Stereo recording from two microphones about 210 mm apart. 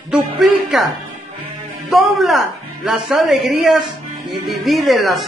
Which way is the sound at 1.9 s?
Centre (ahead or behind).